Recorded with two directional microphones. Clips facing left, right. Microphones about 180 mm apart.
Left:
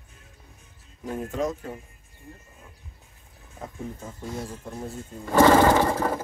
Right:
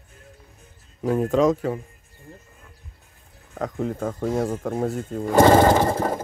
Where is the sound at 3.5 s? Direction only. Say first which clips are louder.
Right 10 dB; 80° right.